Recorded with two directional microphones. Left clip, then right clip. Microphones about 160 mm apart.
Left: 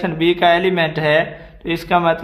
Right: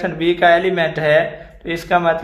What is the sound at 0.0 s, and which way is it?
A man's voice, 25° left (ahead or behind).